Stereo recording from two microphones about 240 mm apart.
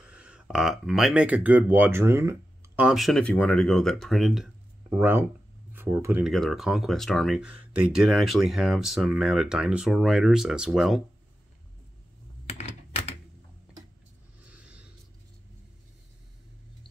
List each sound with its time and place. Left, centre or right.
0.0 s speech: centre
12.4 s computer keyboard: left
14.5 s a sound: centre